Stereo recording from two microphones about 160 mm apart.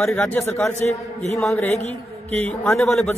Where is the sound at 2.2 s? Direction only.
40° right (ahead or behind).